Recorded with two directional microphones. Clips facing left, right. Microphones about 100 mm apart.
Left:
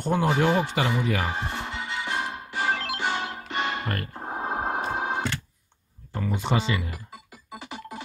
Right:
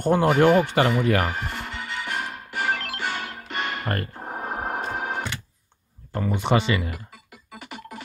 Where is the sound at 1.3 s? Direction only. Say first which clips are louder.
Left 1 dB; 20° left (ahead or behind).